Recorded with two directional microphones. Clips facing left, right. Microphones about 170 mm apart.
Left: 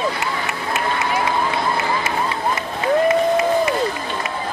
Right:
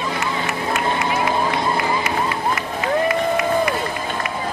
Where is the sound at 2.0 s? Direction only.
25° left (ahead or behind).